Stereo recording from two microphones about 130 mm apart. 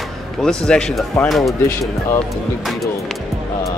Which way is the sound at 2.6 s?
Centre (ahead or behind).